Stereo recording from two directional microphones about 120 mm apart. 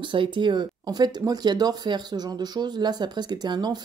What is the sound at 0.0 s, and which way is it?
Speech, 40° right (ahead or behind).